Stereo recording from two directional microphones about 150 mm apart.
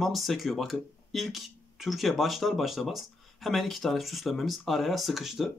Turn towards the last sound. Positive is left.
turn(degrees=0)  # may be behind; listen again after turning